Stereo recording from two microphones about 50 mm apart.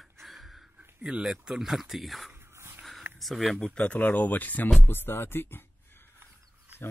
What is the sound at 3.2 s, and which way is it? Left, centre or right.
Speech, centre.